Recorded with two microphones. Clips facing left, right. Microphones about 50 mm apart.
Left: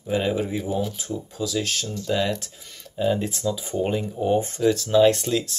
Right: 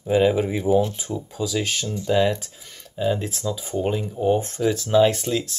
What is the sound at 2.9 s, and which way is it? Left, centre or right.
Speech, centre.